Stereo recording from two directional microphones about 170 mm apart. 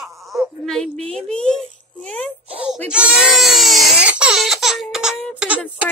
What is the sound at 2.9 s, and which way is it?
Crying, 5° right (ahead or behind).